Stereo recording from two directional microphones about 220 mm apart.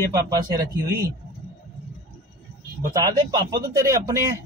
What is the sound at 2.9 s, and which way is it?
A man's voice, 15° right (ahead or behind).